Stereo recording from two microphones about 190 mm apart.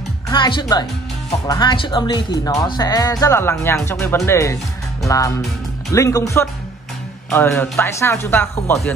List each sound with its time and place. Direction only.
0.3 s speech: 25° left (ahead or behind)